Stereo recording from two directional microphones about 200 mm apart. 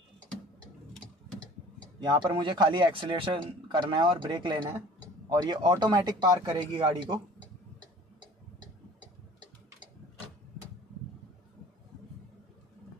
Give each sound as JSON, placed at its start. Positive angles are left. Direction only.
{"t": 2.0, "sound": "a man's voice", "side_deg": -25}